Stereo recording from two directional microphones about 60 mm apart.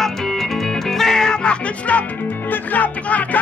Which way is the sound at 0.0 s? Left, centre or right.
Centre.